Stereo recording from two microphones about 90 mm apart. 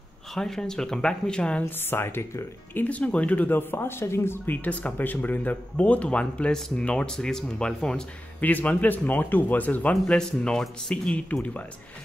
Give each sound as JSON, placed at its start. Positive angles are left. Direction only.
{"t": 0.3, "sound": "speech", "side_deg": 5}
{"t": 1.6, "sound": "speech", "side_deg": 25}
{"t": 4.6, "sound": "speech", "side_deg": 15}